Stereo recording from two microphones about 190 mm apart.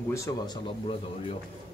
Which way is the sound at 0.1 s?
15° left (ahead or behind).